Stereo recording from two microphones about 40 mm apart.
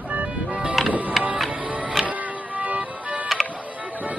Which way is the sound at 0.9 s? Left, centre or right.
Right.